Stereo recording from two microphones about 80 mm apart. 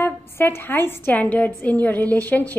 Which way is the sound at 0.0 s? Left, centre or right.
Left.